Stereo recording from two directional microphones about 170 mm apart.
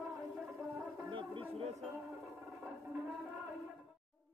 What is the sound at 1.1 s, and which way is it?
Music, 30° right (ahead or behind).